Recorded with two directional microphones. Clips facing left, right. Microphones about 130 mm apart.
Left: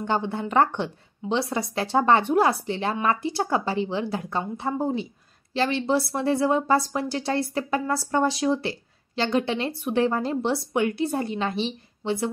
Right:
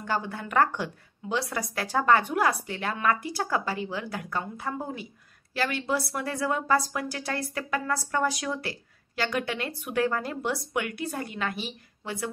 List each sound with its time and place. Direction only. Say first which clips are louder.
0.0 s a woman's voice: left 5 dB; 25° left (ahead or behind)